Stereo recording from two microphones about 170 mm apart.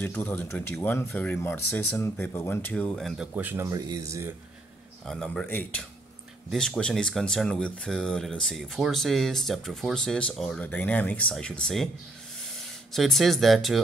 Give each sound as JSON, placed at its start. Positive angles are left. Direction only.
{"t": 0.0, "sound": "speech", "side_deg": 10}
{"t": 3.3, "sound": "speech", "side_deg": -10}
{"t": 5.0, "sound": "speech", "side_deg": 5}
{"t": 12.9, "sound": "speech", "side_deg": 0}